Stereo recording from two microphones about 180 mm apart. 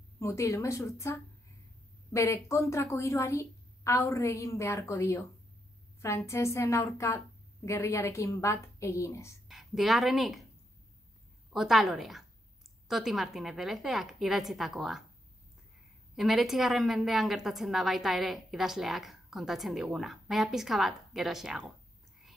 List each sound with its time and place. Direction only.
0.2 s a woman's voice: 15° left (ahead or behind)
9.5 s a woman's voice: centre (ahead or behind)
11.5 s a woman's voice: centre (ahead or behind)
16.2 s a woman's voice: centre (ahead or behind)